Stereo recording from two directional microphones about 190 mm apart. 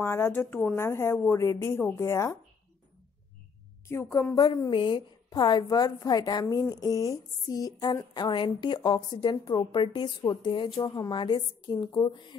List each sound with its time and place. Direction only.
0.0 s a woman's voice: 10° left (ahead or behind)
3.9 s a woman's voice: 15° left (ahead or behind)